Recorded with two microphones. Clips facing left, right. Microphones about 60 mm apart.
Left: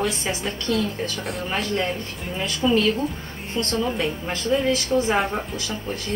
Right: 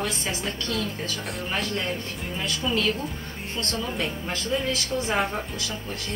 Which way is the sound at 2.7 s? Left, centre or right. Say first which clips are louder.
Left 7 dB; centre.